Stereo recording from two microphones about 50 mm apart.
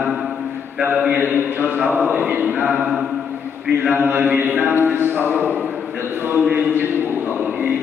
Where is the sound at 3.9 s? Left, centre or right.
Right.